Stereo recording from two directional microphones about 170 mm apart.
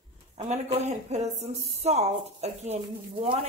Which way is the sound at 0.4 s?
40° right (ahead or behind).